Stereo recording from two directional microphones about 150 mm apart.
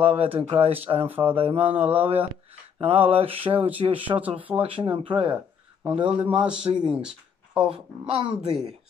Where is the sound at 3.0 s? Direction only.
40° right (ahead or behind).